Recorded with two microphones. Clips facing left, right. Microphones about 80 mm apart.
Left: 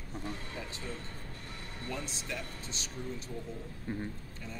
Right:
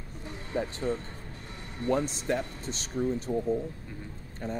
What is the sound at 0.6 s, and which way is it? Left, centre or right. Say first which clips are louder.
Speech: right 11 dB; right.